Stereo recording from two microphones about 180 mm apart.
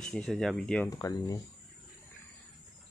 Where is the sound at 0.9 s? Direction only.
20° left (ahead or behind).